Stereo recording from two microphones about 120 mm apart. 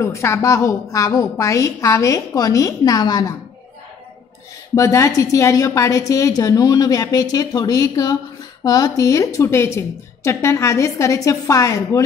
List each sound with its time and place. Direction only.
0.0 s a woman's voice: 25° left (ahead or behind)
4.7 s a woman's voice: 25° left (ahead or behind)